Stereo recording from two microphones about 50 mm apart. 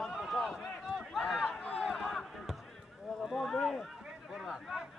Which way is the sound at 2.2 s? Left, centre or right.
Centre.